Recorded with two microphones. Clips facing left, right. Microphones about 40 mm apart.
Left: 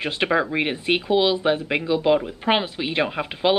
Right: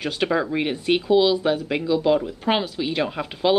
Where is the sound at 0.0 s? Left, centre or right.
Left.